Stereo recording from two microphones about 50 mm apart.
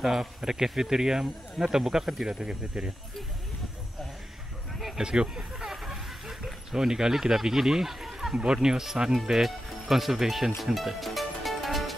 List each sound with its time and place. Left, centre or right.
0.0 s speech: centre
4.7 s a sound: centre
5.0 s speech: centre
5.7 s a sound: centre
8.6 s speech: centre
10.6 s music: centre